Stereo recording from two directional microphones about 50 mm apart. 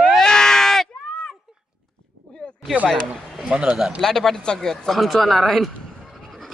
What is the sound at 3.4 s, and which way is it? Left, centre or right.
Speech, right.